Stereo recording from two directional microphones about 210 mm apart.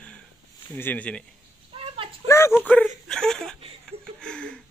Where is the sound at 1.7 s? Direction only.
25° right (ahead or behind).